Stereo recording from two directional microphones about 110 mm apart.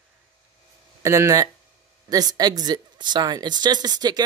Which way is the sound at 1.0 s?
25° right (ahead or behind).